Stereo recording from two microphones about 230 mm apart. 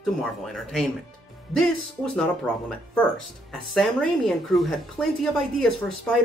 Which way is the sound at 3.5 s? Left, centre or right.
Centre.